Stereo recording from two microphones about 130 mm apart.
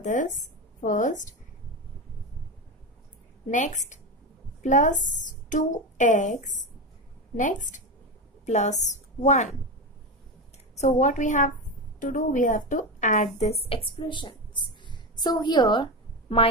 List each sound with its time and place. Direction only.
0.0 s a woman's voice: 75° left (ahead or behind)
3.4 s speech: 70° left (ahead or behind)
8.5 s a woman's voice: 60° left (ahead or behind)
10.8 s speech: 65° left (ahead or behind)
12.0 s speech: 90° left; by 14.6 s 35° left (ahead or behind)
14.9 s a sound: 35° left (ahead or behind)